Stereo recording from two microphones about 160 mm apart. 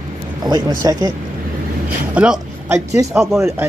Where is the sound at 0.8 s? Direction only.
25° right (ahead or behind).